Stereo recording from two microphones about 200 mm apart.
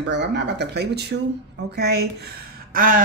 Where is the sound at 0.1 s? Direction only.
60° right (ahead or behind).